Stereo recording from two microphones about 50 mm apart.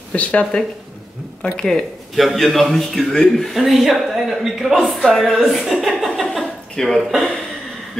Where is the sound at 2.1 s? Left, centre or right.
Centre.